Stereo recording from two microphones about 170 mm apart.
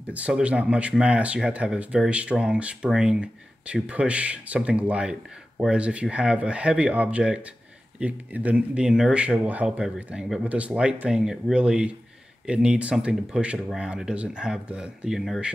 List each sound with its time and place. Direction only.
0.1 s speech: 5° right (ahead or behind)